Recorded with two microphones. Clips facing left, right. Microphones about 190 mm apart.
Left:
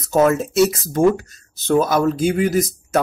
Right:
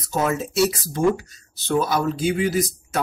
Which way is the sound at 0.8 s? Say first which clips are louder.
Left 5 dB; 50° left (ahead or behind).